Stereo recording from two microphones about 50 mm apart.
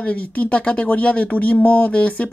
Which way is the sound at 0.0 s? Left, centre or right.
Left.